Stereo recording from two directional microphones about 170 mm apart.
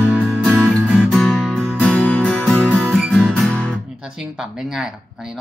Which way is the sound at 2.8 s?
Centre (ahead or behind).